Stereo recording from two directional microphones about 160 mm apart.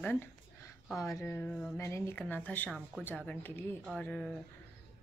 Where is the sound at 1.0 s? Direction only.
20° left (ahead or behind).